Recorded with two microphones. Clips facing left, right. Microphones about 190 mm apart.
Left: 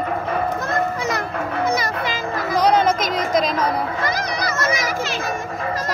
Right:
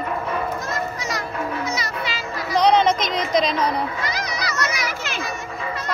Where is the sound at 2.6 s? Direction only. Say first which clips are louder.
Even; 5° left (ahead or behind).